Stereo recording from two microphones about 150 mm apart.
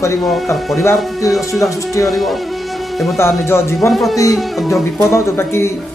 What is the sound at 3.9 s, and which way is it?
Speech, centre (ahead or behind).